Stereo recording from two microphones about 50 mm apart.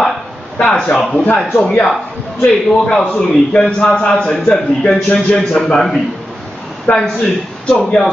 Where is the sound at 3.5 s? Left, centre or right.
Centre.